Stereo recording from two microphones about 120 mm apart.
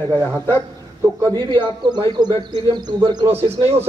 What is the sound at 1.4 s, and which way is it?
Speech, 40° right (ahead or behind).